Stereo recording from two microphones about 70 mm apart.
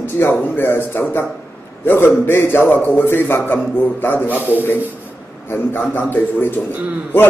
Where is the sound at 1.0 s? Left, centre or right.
Left.